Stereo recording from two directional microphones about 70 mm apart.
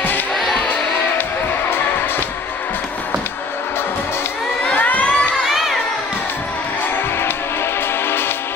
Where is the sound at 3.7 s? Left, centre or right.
Left.